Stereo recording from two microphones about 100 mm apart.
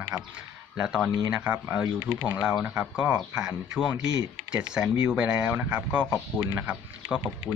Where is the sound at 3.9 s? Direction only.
40° right (ahead or behind).